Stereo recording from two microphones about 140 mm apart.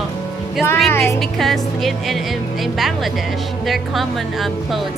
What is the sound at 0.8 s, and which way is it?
Speech, 15° left (ahead or behind).